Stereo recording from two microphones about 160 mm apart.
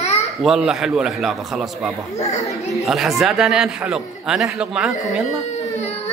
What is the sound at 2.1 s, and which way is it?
Speech, 45° left (ahead or behind).